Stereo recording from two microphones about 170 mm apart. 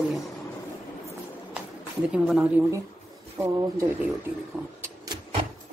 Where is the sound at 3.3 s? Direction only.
15° right (ahead or behind).